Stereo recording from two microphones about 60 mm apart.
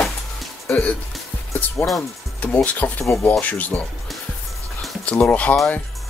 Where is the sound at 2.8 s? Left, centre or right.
Left.